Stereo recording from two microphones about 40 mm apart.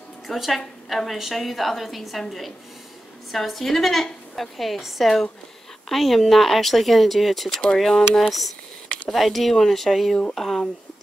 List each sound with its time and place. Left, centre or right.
0.3 s a woman's voice: centre
7.5 s speech: left
7.8 s a woman's voice: centre